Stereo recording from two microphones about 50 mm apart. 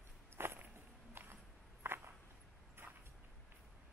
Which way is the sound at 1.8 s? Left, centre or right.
Right.